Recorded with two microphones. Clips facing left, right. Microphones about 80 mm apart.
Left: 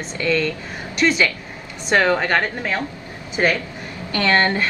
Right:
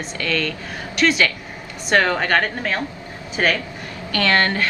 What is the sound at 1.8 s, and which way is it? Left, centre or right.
A woman's voice, centre.